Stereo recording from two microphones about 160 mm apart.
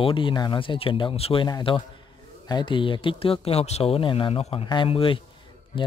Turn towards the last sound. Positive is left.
turn(degrees=30)  # may be behind; listen again after turning